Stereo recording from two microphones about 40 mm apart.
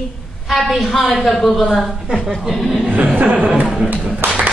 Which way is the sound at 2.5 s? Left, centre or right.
Centre.